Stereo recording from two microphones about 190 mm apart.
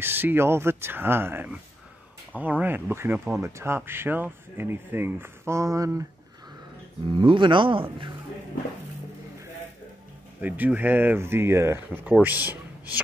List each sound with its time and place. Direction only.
0.0 s speech: 10° right (ahead or behind)
7.2 s speech: 25° right (ahead or behind)
10.4 s speech: 10° right (ahead or behind)